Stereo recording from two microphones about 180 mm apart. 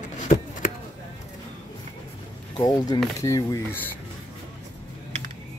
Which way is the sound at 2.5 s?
20° left (ahead or behind).